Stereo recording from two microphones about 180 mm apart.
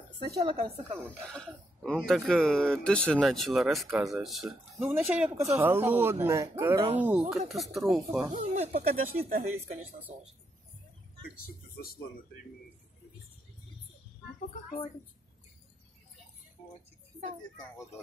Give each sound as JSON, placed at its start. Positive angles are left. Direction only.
{"t": 0.4, "sound": "speech", "side_deg": -25}
{"t": 1.2, "sound": "speech", "side_deg": 5}
{"t": 4.8, "sound": "speech", "side_deg": -10}
{"t": 8.3, "sound": "speech", "side_deg": -45}
{"t": 11.2, "sound": "speech", "side_deg": 55}